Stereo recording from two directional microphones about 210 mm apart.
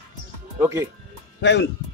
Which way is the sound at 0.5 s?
10° right (ahead or behind).